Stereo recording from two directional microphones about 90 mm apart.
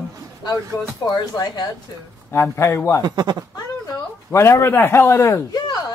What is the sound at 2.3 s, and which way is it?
Speech, 30° left (ahead or behind).